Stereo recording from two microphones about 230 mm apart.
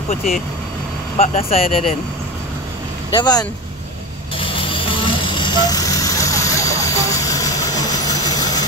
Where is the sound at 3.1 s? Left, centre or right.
Centre.